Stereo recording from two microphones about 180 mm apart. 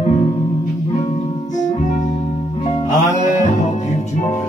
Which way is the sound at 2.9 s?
40° left (ahead or behind).